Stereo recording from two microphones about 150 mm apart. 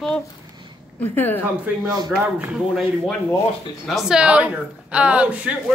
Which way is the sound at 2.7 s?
5° left (ahead or behind).